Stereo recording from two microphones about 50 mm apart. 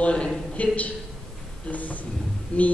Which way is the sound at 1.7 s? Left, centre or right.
Left.